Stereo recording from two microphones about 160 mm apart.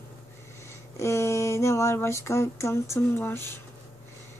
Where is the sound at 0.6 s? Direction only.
15° left (ahead or behind).